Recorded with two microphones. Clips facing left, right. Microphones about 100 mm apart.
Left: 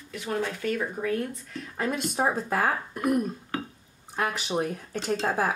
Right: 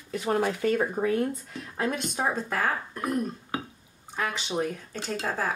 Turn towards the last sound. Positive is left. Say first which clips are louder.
# left 4 dB
turn(degrees=15)  # may be behind; listen again after turning